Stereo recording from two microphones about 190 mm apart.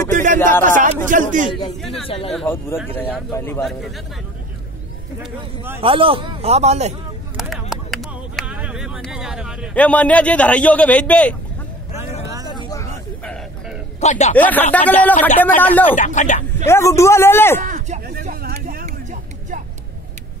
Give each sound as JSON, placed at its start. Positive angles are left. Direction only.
{"t": 0.1, "sound": "a sound", "side_deg": -40}
{"t": 0.7, "sound": "speech", "side_deg": -45}
{"t": 2.0, "sound": "speech", "side_deg": 30}
{"t": 2.3, "sound": "a man's voice", "side_deg": 10}
{"t": 5.8, "sound": "a man's voice", "side_deg": -30}
{"t": 7.7, "sound": "a sound", "side_deg": 0}
{"t": 9.8, "sound": "a man's voice", "side_deg": 5}
{"t": 12.4, "sound": "vehicle", "side_deg": 20}
{"t": 13.2, "sound": "a sound", "side_deg": 5}
{"t": 13.9, "sound": "speech", "side_deg": 35}
{"t": 14.3, "sound": "a man's voice", "side_deg": 10}
{"t": 16.0, "sound": "speech", "side_deg": 40}
{"t": 16.6, "sound": "a man's voice", "side_deg": 15}
{"t": 17.6, "sound": "a sound", "side_deg": -40}